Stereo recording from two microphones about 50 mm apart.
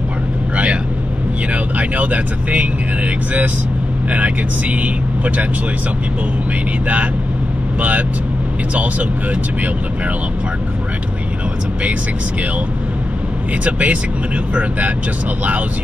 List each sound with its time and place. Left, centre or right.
1.5 s speech: right
4.1 s speech: right
13.7 s speech: right